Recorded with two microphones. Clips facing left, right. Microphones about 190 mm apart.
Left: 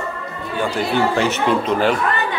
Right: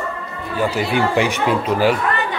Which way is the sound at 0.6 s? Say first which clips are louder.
Even; 10° right (ahead or behind).